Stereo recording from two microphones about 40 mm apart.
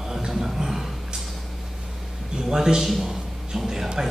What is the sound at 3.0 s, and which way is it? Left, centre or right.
Music, centre.